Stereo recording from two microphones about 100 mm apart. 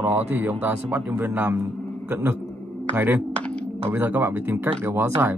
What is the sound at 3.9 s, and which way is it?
Speech, 20° right (ahead or behind).